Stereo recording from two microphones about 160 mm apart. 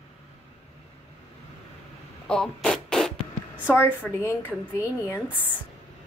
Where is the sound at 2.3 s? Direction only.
5° left (ahead or behind).